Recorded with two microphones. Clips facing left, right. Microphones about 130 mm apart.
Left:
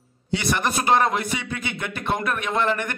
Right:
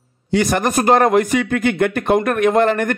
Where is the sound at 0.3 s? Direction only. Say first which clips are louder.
Right 7 dB; 45° right (ahead or behind).